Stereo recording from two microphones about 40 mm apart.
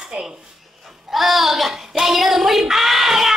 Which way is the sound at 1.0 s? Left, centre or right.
Centre.